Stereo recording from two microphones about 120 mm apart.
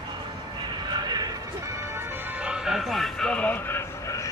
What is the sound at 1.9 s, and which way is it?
Music, 10° right (ahead or behind).